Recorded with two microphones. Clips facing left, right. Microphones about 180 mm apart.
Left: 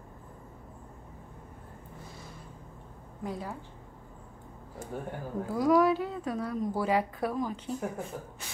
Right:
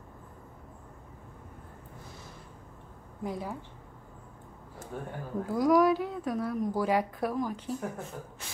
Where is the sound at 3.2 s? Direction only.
15° right (ahead or behind).